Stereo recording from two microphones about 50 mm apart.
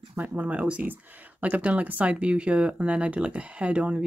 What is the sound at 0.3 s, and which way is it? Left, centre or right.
Speech, right.